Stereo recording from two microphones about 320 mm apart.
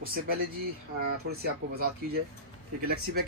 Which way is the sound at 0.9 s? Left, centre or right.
Right.